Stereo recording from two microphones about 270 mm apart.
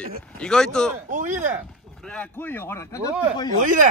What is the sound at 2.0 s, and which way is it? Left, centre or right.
A man's voice, centre.